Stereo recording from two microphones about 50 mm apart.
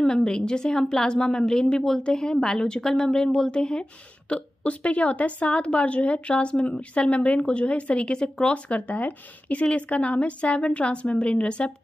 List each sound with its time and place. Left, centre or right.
0.0 s a woman's voice: centre